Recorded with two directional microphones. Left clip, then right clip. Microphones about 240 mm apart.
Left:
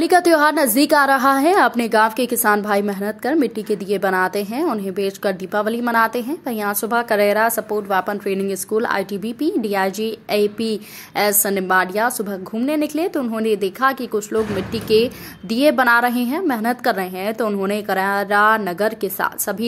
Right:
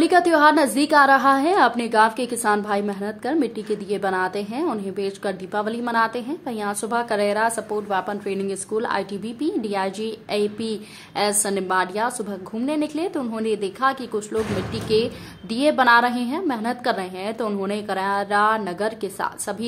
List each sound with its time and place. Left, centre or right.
0.0 s a woman's voice: centre
15.5 s a woman's voice: centre